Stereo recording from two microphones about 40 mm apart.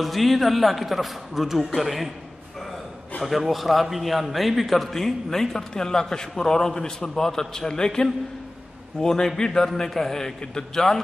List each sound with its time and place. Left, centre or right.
0.0 s a man's voice: centre
3.2 s a man's voice: centre